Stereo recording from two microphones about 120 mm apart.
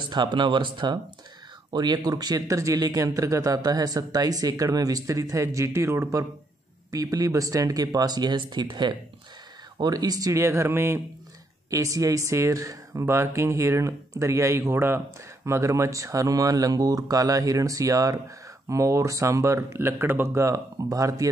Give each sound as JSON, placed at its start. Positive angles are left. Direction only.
{"t": 0.0, "sound": "speech", "side_deg": -40}